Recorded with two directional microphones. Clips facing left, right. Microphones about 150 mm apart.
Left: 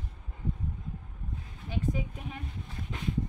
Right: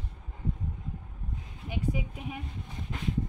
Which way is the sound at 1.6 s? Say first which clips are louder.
Even; 10° right (ahead or behind).